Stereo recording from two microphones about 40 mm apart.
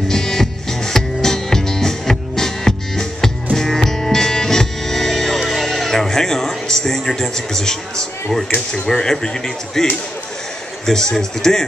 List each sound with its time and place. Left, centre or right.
0.1 s music: centre
8.8 s speech: centre
10.9 s speech: centre